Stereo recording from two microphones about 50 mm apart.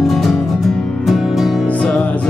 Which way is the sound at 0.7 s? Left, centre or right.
Centre.